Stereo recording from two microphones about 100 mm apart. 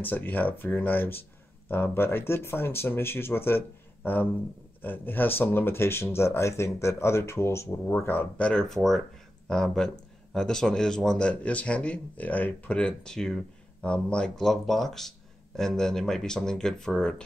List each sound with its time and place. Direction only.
0.1 s a man's voice: 15° left (ahead or behind)